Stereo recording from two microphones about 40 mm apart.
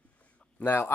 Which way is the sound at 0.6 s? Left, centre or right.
Left.